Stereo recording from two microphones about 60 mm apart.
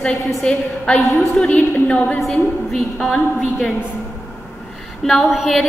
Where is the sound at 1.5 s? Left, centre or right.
Left.